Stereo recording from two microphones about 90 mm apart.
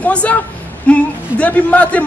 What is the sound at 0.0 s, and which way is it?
A man's voice, 15° left (ahead or behind).